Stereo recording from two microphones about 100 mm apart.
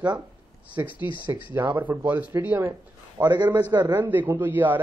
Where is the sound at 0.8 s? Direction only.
25° right (ahead or behind).